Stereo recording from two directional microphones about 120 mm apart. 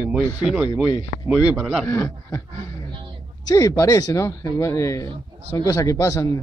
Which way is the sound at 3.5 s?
30° left (ahead or behind).